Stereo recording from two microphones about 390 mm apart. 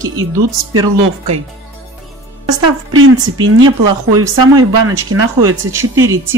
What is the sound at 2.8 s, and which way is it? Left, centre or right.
Speech, right.